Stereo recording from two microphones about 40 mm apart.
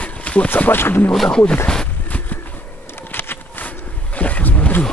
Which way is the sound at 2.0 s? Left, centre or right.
Left.